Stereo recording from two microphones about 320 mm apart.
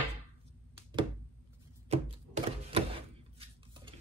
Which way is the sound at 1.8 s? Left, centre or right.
Centre.